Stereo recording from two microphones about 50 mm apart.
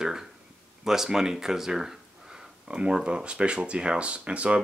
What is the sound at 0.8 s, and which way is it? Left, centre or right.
Speech, centre.